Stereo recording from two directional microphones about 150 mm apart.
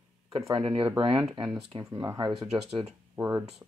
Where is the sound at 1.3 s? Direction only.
25° right (ahead or behind).